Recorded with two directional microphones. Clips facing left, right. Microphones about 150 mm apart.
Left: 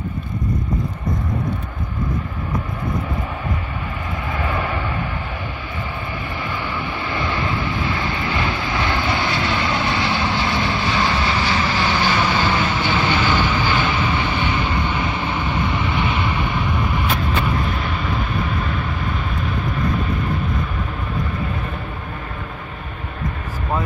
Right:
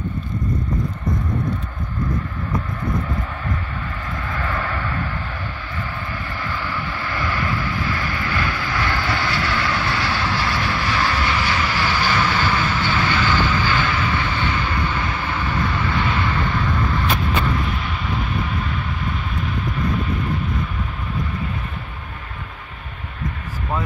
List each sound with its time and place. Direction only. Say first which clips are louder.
4.3 s vehicle: left 2 dB; 15° left (ahead or behind)
6.4 s vehicle: left 1 dB; 20° left (ahead or behind)